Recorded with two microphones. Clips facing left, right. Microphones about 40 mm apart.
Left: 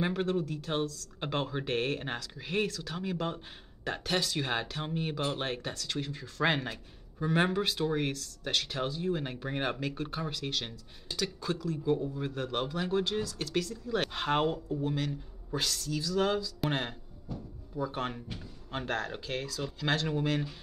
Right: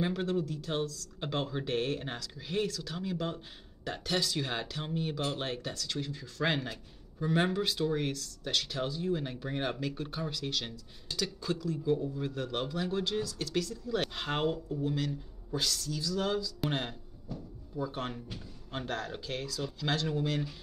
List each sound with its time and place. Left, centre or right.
0.0 s speech: left
13.2 s speech: left